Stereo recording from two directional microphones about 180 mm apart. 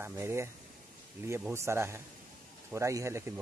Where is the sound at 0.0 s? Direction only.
15° right (ahead or behind).